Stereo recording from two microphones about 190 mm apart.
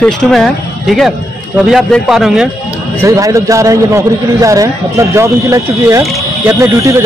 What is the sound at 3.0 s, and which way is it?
Speech, 15° right (ahead or behind).